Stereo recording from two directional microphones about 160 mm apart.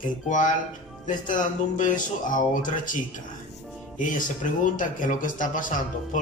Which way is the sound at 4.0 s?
55° left (ahead or behind).